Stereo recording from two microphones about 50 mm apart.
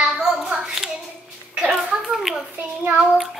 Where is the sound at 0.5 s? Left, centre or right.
Right.